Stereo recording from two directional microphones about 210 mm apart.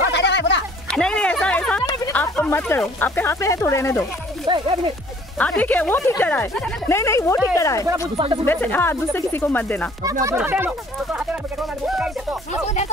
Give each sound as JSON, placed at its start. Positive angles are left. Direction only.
{"t": 0.1, "sound": "a sound", "side_deg": 55}
{"t": 0.8, "sound": "a sound", "side_deg": 5}
{"t": 2.1, "sound": "speech", "side_deg": 5}
{"t": 4.5, "sound": "speech", "side_deg": -25}
{"t": 5.4, "sound": "speech", "side_deg": 5}
{"t": 8.2, "sound": "speech", "side_deg": -25}
{"t": 8.5, "sound": "speech", "side_deg": 10}
{"t": 10.2, "sound": "speech", "side_deg": -10}
{"t": 11.8, "sound": "speech", "side_deg": -5}
{"t": 12.6, "sound": "speech", "side_deg": 35}